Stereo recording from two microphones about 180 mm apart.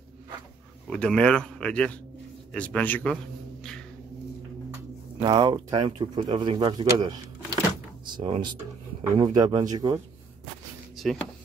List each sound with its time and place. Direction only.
0.8 s a man's voice: 5° left (ahead or behind)
5.2 s speech: 20° right (ahead or behind)
11.0 s a sound: centre (ahead or behind)